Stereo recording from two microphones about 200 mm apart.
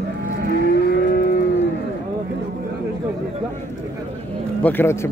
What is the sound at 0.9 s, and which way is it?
Moo, 50° left (ahead or behind).